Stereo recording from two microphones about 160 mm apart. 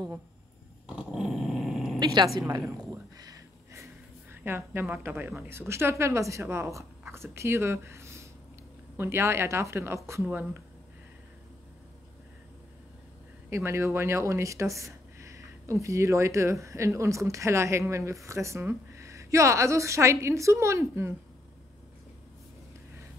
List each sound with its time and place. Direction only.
0.8 s dog: 5° right (ahead or behind)
2.4 s a sound: 20° right (ahead or behind)
4.3 s a woman's voice: 15° right (ahead or behind)
13.5 s speech: 15° right (ahead or behind)